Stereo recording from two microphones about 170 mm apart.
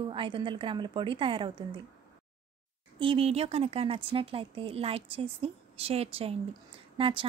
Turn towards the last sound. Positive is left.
turn(degrees=-30)  # may be behind; listen again after turning